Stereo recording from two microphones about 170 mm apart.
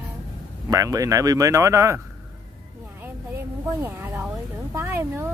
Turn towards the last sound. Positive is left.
turn(degrees=-15)  # may be behind; listen again after turning